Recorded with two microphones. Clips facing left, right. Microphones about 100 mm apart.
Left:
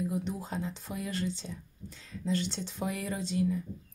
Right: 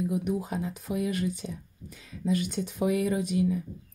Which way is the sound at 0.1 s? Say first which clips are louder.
Right 5 dB; 5° right (ahead or behind).